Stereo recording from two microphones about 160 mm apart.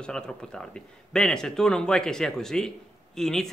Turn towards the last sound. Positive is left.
turn(degrees=0)  # may be behind; listen again after turning